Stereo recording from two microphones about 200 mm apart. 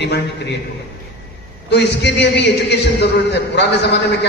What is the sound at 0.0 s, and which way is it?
Speech, 60° left (ahead or behind).